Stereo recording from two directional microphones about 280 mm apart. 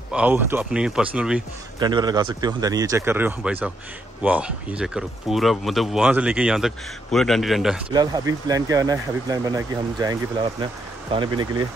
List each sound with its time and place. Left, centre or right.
0.1 s speech: centre
1.8 s speech: centre
7.9 s speech: centre